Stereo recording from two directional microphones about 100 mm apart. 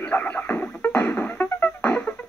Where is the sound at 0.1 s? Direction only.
20° left (ahead or behind).